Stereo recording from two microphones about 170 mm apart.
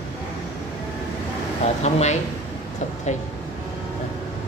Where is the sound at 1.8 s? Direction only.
40° left (ahead or behind).